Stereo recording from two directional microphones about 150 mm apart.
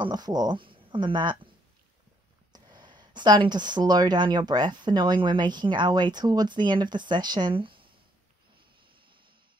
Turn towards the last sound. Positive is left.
turn(degrees=-35)  # may be behind; listen again after turning